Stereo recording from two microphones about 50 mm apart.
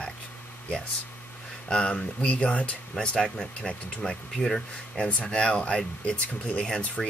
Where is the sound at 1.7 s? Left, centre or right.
Left.